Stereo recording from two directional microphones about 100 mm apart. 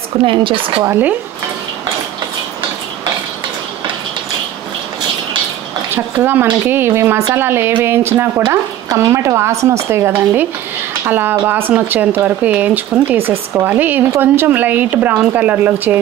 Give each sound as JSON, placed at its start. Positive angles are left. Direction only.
{"t": 0.2, "sound": "speech", "side_deg": -60}
{"t": 0.8, "sound": "speech", "side_deg": -20}
{"t": 5.9, "sound": "speech", "side_deg": -20}